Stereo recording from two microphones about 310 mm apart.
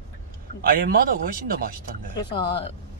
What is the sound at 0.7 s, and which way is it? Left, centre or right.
Speech, right.